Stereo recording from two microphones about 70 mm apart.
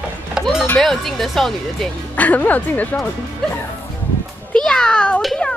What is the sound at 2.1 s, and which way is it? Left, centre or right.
Speech, left.